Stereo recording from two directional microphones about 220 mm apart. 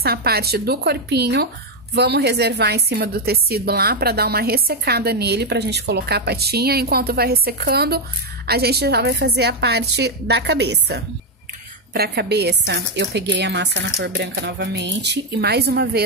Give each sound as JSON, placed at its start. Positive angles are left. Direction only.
{"t": 0.0, "sound": "a woman's voice", "side_deg": -45}